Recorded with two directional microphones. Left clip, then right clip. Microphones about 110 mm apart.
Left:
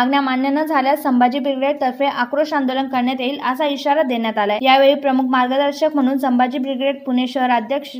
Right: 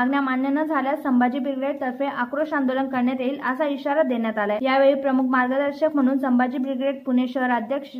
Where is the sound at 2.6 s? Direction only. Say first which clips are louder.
Left 4 dB; 25° left (ahead or behind).